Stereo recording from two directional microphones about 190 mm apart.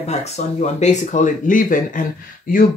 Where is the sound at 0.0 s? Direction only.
35° left (ahead or behind).